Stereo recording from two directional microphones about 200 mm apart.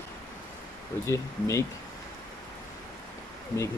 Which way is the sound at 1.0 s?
15° left (ahead or behind).